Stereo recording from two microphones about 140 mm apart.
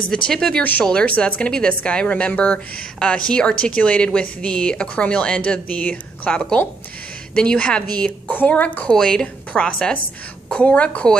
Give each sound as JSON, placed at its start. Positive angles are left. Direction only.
{"t": 0.3, "sound": "a woman's voice", "side_deg": 5}